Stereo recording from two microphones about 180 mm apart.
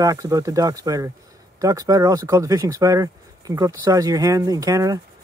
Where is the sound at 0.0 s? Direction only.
20° right (ahead or behind).